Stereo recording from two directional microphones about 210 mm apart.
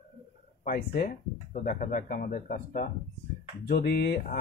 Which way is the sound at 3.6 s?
50° left (ahead or behind).